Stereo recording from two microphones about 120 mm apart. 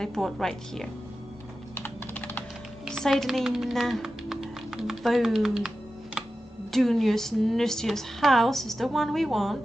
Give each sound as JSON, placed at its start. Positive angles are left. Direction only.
{"t": 0.0, "sound": "a woman's voice", "side_deg": 5}
{"t": 1.8, "sound": "computer keyboard", "side_deg": 15}
{"t": 2.8, "sound": "speech", "side_deg": 0}
{"t": 6.7, "sound": "a woman's voice", "side_deg": 0}